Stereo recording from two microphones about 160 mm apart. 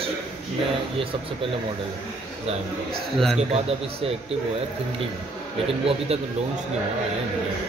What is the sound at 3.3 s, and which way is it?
Speech, 40° right (ahead or behind).